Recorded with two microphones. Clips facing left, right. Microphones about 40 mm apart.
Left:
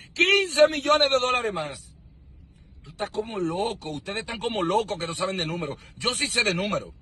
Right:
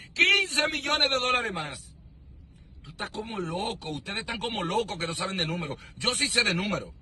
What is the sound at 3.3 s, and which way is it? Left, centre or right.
Speech, left.